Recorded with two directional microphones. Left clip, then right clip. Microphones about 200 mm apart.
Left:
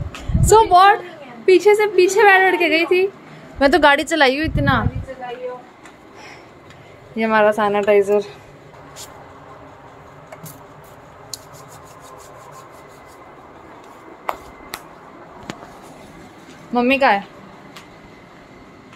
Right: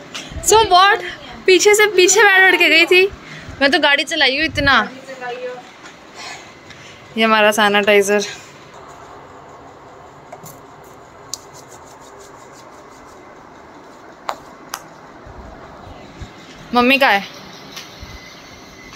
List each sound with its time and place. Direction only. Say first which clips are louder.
0.5 s a woman's voice: even; 15° left (ahead or behind)
3.5 s a woman's voice: left 1 dB; 25° left (ahead or behind)
4.5 s a woman's voice: right 5 dB; 15° left (ahead or behind)
7.2 s a woman's voice: right 3 dB; 10° left (ahead or behind)
16.7 s a woman's voice: right 3 dB; centre (ahead or behind)